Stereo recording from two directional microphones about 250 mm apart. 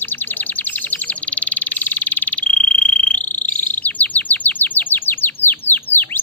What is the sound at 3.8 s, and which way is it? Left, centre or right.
Chirp, centre.